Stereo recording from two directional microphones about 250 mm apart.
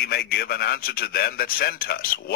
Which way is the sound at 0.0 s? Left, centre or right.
Left.